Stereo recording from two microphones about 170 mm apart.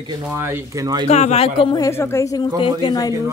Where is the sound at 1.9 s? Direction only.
15° left (ahead or behind).